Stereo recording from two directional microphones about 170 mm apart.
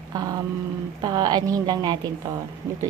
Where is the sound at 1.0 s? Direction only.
25° right (ahead or behind).